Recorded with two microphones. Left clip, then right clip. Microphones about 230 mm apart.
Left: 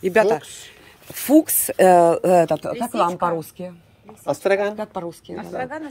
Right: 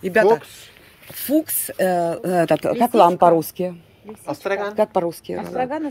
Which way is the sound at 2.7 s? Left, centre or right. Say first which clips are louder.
Right 7 dB; centre.